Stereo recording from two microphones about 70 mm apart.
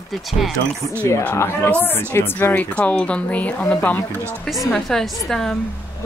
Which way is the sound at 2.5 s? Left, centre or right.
Left.